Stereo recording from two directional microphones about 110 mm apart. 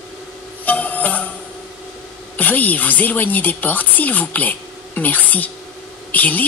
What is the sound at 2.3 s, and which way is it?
Speech, 15° left (ahead or behind).